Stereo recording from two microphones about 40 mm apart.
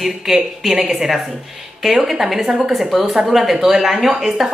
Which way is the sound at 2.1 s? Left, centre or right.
Centre.